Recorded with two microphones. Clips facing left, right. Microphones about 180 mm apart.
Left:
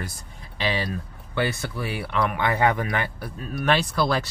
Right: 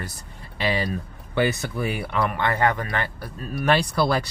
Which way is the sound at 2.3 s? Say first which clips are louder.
Left 1 dB; 5° left (ahead or behind).